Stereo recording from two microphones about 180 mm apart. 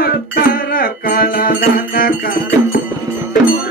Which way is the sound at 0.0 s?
55° left (ahead or behind).